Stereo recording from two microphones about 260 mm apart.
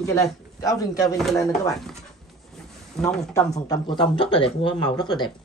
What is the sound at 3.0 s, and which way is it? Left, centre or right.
Speech, centre.